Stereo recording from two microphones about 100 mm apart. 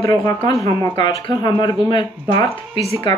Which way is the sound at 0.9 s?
50° left (ahead or behind).